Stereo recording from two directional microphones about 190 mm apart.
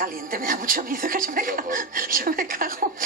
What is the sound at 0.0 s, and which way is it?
Speech, 45° right (ahead or behind).